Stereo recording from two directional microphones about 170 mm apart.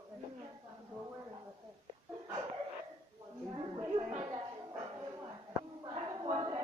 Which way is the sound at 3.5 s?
30° right (ahead or behind).